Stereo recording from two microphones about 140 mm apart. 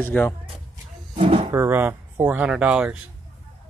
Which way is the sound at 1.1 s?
40° right (ahead or behind).